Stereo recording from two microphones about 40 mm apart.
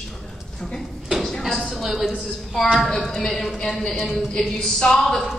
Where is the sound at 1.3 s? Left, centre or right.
Centre.